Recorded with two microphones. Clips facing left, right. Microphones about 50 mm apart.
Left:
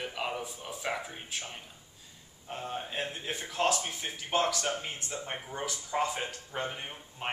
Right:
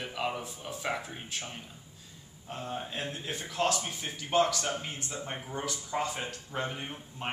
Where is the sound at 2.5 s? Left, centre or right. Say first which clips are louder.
Left 1 dB; centre.